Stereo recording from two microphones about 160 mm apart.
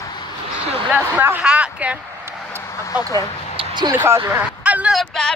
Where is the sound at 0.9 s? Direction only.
10° right (ahead or behind).